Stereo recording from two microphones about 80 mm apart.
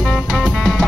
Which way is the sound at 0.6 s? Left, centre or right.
Centre.